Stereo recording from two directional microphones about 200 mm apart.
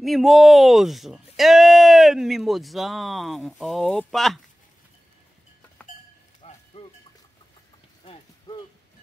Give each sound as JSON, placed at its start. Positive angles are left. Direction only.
{"t": 0.0, "sound": "speech", "side_deg": 0}
{"t": 6.4, "sound": "music", "side_deg": 30}
{"t": 8.0, "sound": "a sound", "side_deg": 30}